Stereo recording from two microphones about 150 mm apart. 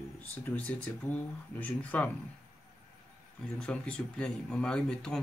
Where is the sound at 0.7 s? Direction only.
10° left (ahead or behind).